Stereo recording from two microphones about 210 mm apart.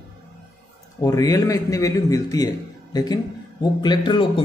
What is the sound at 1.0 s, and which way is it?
A man's voice, 15° left (ahead or behind).